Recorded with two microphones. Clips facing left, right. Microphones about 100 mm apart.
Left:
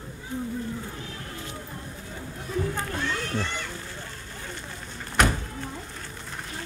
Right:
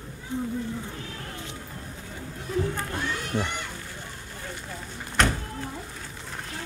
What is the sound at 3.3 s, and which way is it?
Children playing, 15° right (ahead or behind).